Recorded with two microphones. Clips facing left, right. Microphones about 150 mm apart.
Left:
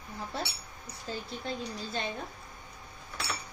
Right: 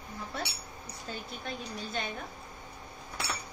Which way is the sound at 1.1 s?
30° left (ahead or behind).